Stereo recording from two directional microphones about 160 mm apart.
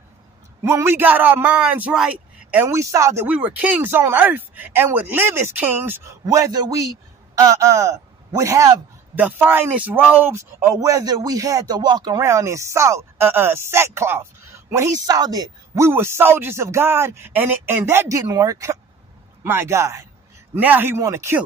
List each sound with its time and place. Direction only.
0.7 s speech: 15° right (ahead or behind)
6.2 s a man's voice: 25° right (ahead or behind)